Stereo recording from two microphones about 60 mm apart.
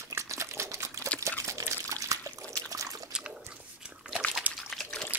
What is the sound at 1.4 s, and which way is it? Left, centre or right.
Water, right.